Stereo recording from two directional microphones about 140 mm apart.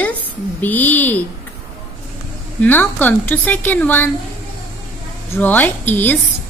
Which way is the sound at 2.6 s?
15° left (ahead or behind).